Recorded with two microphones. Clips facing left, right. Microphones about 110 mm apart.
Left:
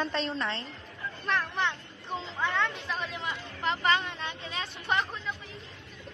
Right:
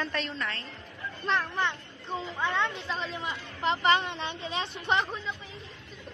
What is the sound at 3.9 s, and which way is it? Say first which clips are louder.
Speech: right 3 dB; 30° right (ahead or behind).